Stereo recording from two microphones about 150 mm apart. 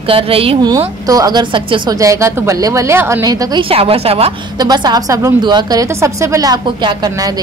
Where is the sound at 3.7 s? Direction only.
40° right (ahead or behind).